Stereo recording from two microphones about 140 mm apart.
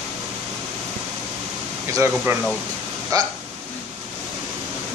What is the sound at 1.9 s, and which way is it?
Speech, 20° right (ahead or behind).